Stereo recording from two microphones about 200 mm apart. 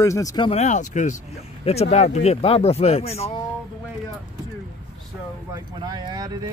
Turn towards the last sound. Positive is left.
turn(degrees=-20)  # may be behind; listen again after turning